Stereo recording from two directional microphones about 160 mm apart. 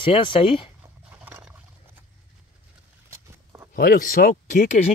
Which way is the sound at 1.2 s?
10° right (ahead or behind).